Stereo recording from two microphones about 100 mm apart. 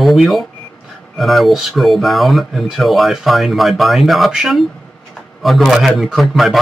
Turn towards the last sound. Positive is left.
turn(degrees=0)  # may be behind; listen again after turning